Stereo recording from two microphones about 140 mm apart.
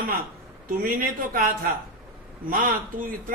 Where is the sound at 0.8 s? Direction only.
85° right.